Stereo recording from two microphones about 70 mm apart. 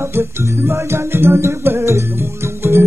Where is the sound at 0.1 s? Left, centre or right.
Right.